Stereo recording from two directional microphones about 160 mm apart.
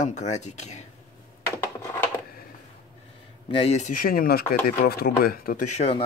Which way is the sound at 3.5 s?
40° left (ahead or behind).